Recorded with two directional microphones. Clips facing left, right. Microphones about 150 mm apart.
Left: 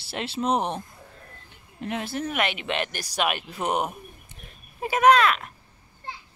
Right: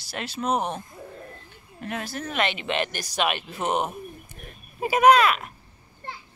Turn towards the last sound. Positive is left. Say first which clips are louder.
# right 1 dB
turn(degrees=-5)  # may be behind; listen again after turning